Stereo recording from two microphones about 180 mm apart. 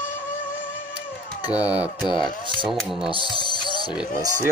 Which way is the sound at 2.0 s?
25° left (ahead or behind).